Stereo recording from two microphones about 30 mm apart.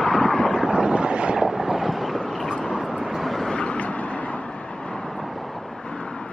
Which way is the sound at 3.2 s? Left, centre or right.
Centre.